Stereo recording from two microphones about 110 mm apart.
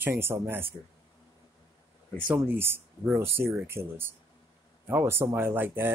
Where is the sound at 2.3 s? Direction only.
20° right (ahead or behind).